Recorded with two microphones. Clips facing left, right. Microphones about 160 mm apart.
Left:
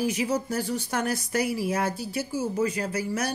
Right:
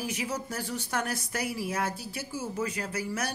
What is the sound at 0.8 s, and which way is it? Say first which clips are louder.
Speech: left 4 dB; 5° left (ahead or behind).